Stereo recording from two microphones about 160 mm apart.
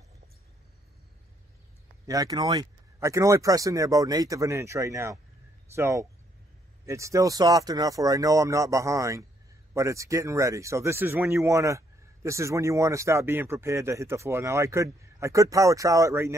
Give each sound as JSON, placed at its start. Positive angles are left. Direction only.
{"t": 2.0, "sound": "speech", "side_deg": -20}